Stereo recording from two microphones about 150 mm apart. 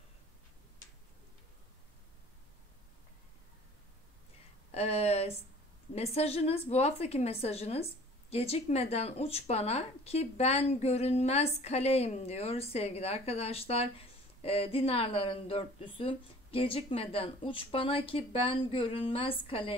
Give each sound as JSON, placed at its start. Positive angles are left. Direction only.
{"t": 4.7, "sound": "a woman's voice", "side_deg": 45}